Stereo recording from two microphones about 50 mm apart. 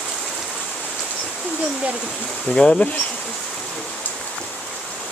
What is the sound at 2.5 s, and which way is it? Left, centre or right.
Speech, centre.